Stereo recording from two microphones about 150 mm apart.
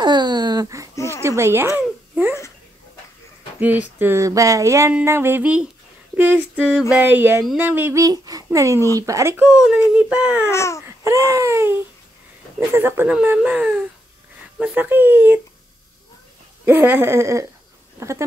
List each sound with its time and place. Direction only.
0.0 s a sound: 30° right (ahead or behind)
0.9 s baby cry: 20° left (ahead or behind)
1.2 s speech: 20° right (ahead or behind)
3.5 s a sound: 10° right (ahead or behind)
4.9 s speech: 15° right (ahead or behind)
7.5 s a sound: 10° right (ahead or behind)
9.0 s speech: 20° right (ahead or behind)
9.5 s speech: 5° right (ahead or behind)
10.5 s baby cry: 20° left (ahead or behind)
11.1 s a sound: 20° right (ahead or behind)
12.5 s speech: 15° right (ahead or behind)
16.6 s speech: 10° right (ahead or behind)